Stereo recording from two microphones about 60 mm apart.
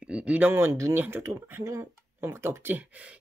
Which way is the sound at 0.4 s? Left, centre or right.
Right.